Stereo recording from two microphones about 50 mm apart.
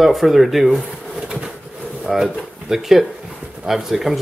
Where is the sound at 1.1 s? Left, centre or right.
Centre.